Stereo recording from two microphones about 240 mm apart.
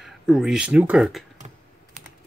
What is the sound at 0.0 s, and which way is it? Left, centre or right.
Speech, centre.